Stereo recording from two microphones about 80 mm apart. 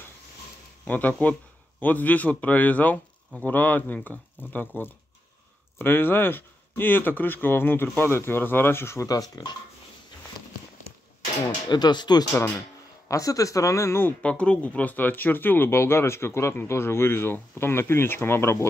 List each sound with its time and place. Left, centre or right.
0.8 s speech: centre
9.0 s speech: left
11.4 s speech: left
13.1 s speech: left
14.2 s speech: centre; by 18.7 s left